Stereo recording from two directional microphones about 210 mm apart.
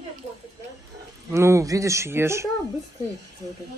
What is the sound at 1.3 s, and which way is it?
A man's voice, 15° right (ahead or behind).